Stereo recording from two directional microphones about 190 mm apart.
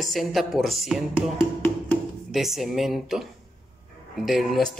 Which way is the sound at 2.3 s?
Centre (ahead or behind).